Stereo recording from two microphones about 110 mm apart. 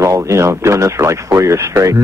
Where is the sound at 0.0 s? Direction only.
25° right (ahead or behind).